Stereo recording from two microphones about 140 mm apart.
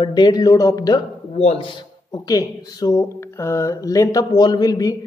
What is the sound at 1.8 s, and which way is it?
Speech, 30° left (ahead or behind).